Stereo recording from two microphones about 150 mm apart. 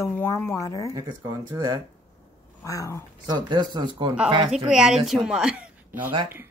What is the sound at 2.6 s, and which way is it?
Speech, 20° left (ahead or behind).